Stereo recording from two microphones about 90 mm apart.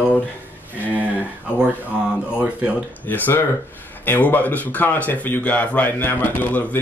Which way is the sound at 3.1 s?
20° left (ahead or behind).